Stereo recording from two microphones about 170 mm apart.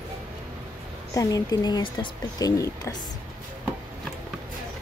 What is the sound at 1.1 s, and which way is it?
A woman's voice, 20° left (ahead or behind).